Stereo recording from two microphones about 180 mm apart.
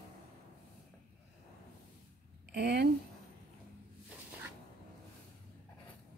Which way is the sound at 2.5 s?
70° right (ahead or behind).